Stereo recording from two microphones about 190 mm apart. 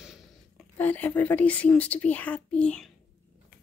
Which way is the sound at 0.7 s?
10° left (ahead or behind).